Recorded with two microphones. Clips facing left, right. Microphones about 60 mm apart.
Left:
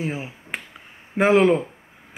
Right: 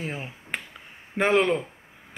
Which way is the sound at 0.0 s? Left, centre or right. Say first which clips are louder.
Left 5 dB; centre.